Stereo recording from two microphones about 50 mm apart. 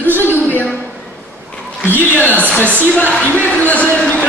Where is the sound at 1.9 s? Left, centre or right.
Left.